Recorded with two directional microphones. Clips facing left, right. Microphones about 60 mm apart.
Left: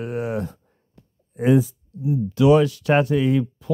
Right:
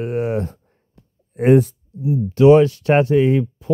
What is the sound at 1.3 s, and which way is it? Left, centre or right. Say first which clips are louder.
Speech: right 4 dB; right.